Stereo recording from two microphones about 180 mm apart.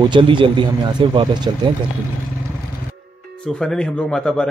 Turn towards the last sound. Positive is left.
turn(degrees=5)  # may be behind; listen again after turning